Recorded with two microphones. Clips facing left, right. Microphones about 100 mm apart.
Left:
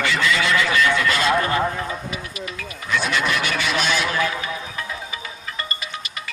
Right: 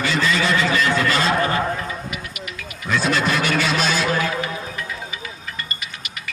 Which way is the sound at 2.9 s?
35° right (ahead or behind).